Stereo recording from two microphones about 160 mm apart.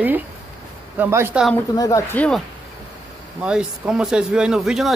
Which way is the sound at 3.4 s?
5° right (ahead or behind).